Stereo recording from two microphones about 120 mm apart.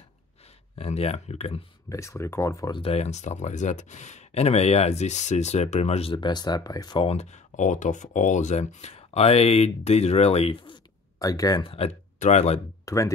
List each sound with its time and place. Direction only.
0.7 s speech: 60° left (ahead or behind)
1.9 s speech: 25° left (ahead or behind)
2.7 s speech: 55° left (ahead or behind)
6.1 s speech: 40° left (ahead or behind)
7.0 s speech: 60° left (ahead or behind)
11.1 s speech: 30° left (ahead or behind)
11.6 s speech: 55° left (ahead or behind)
12.2 s speech: 70° left (ahead or behind)
12.8 s speech: 25° left (ahead or behind)